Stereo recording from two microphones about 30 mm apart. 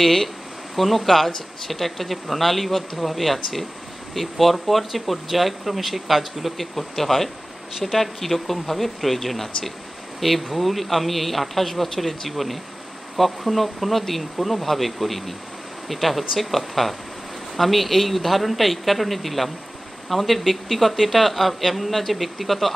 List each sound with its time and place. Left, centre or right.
0.0 s speech: centre